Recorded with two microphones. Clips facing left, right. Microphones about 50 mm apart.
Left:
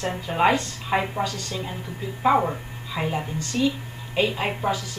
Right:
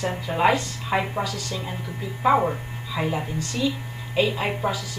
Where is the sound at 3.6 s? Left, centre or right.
Left.